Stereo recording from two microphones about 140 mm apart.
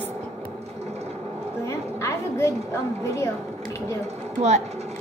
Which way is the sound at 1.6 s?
20° left (ahead or behind).